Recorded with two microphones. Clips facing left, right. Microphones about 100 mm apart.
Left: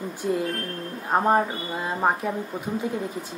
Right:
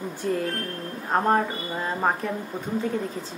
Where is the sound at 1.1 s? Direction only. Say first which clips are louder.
Left 1 dB; 10° left (ahead or behind).